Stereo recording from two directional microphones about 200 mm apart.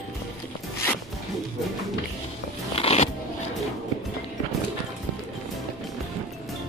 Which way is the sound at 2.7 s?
30° left (ahead or behind).